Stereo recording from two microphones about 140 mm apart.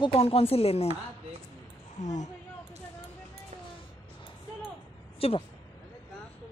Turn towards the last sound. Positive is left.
turn(degrees=45)  # may be behind; listen again after turning